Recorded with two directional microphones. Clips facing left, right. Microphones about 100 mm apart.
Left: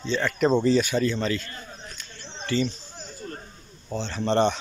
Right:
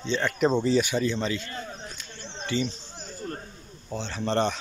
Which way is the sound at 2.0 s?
5° right (ahead or behind).